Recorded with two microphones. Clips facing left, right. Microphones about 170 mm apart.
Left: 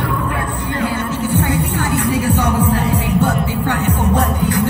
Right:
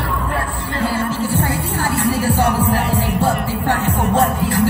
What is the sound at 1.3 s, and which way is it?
Music, 35° right (ahead or behind).